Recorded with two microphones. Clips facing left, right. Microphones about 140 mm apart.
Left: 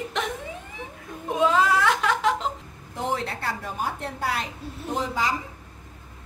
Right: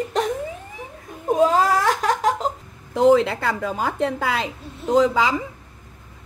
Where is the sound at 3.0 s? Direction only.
90° right.